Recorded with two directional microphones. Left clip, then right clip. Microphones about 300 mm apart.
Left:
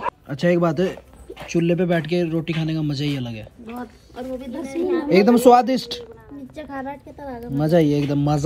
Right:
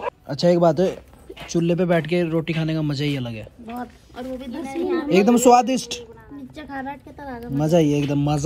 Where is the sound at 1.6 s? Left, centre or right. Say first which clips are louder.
Even; centre.